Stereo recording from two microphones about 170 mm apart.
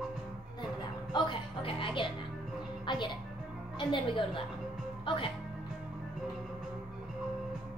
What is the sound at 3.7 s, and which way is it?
A woman's voice, 30° left (ahead or behind).